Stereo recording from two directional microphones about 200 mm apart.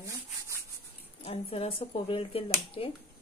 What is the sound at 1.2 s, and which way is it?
Speech, 30° left (ahead or behind).